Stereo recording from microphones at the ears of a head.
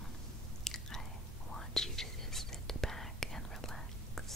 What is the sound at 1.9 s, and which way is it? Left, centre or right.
Whispering, centre.